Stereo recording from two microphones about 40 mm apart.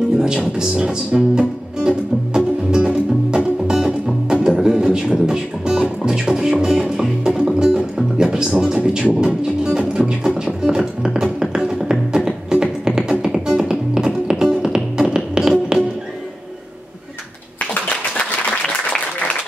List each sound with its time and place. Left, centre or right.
0.2 s music: centre